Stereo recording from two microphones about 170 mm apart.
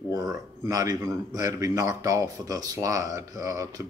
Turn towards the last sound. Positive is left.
turn(degrees=-20)  # may be behind; listen again after turning